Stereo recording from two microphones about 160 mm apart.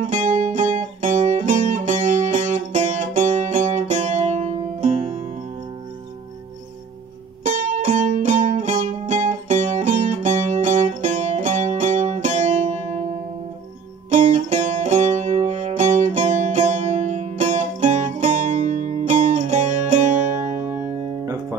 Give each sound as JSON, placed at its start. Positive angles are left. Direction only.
{"t": 0.0, "sound": "music", "side_deg": -50}
{"t": 7.4, "sound": "music", "side_deg": -50}
{"t": 14.2, "sound": "music", "side_deg": -50}